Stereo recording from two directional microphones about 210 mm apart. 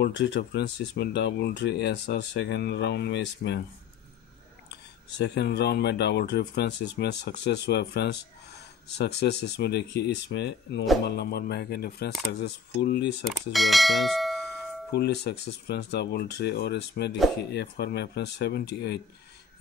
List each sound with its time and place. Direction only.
0.0 s speech: 55° left (ahead or behind)
5.1 s speech: 55° left (ahead or behind)
13.3 s speech: centre (ahead or behind)
14.9 s speech: 50° left (ahead or behind)